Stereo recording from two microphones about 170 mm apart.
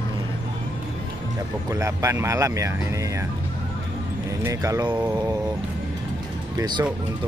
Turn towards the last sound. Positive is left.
turn(degrees=-25)  # may be behind; listen again after turning